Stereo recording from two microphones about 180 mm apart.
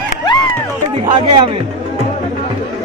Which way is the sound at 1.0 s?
25° right (ahead or behind).